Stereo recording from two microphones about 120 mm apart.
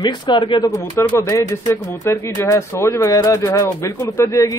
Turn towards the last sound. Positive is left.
turn(degrees=25)  # may be behind; listen again after turning